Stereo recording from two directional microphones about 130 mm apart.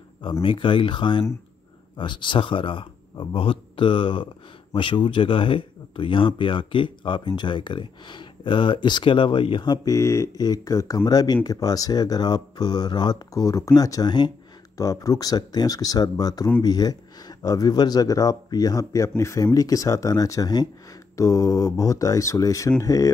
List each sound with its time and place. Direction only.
0.2 s speech: 40° left (ahead or behind)